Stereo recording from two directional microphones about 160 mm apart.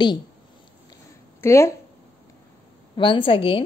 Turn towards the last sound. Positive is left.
turn(degrees=35)  # may be behind; listen again after turning